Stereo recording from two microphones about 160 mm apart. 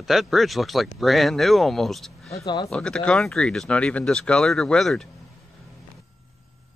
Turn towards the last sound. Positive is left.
turn(degrees=0)  # may be behind; listen again after turning